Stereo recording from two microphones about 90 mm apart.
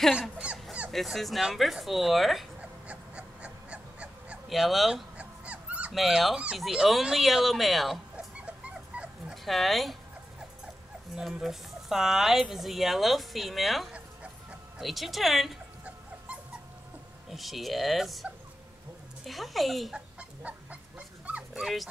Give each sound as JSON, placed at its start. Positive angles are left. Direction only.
{"t": 0.1, "sound": "dog", "side_deg": -10}
{"t": 0.9, "sound": "speech", "side_deg": 0}
{"t": 2.6, "sound": "dog", "side_deg": -15}
{"t": 4.5, "sound": "speech", "side_deg": 0}
{"t": 5.1, "sound": "dog", "side_deg": -15}
{"t": 5.9, "sound": "speech", "side_deg": 0}
{"t": 8.4, "sound": "dog", "side_deg": -15}
{"t": 9.3, "sound": "speech", "side_deg": 0}
{"t": 11.1, "sound": "speech", "side_deg": -5}
{"t": 13.9, "sound": "dog", "side_deg": -15}
{"t": 14.8, "sound": "speech", "side_deg": 0}
{"t": 17.3, "sound": "speech", "side_deg": 0}
{"t": 20.2, "sound": "chicken", "side_deg": -15}
{"t": 21.5, "sound": "speech", "side_deg": -5}